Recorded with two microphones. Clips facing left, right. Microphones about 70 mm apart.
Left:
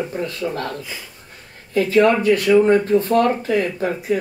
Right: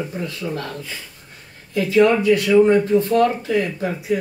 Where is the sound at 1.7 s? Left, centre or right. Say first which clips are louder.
Even; left.